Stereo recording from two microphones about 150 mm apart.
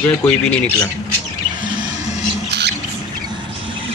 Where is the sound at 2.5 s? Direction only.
90° right.